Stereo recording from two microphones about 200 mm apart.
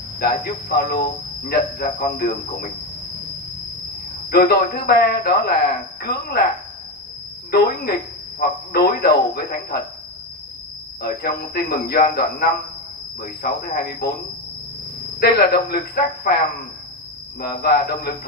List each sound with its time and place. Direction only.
0.2 s a man's voice: 50° left (ahead or behind)
4.3 s a man's voice: 50° left (ahead or behind)
7.5 s a man's voice: 50° left (ahead or behind)
11.0 s a man's voice: 50° left (ahead or behind)
15.1 s a man's voice: 50° left (ahead or behind)
17.4 s a man's voice: 50° left (ahead or behind)